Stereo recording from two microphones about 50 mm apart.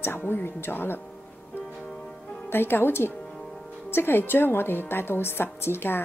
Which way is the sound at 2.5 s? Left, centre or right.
Left.